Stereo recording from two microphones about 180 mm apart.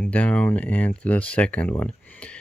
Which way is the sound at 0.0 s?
10° left (ahead or behind).